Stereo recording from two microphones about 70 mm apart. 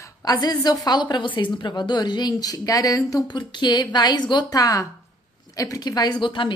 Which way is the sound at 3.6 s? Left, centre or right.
Left.